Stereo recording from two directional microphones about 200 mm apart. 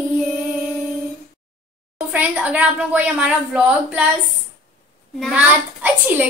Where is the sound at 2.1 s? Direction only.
5° right (ahead or behind).